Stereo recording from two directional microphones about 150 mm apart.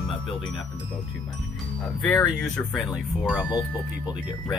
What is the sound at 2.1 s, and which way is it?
Speech, 10° left (ahead or behind).